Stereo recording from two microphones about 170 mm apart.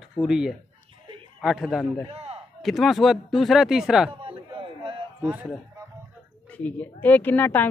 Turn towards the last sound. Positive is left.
turn(degrees=10)  # may be behind; listen again after turning